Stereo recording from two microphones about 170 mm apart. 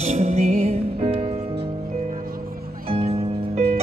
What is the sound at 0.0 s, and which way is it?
Music, 40° right (ahead or behind).